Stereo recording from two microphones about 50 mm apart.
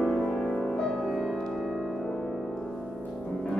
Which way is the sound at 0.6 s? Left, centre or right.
Centre.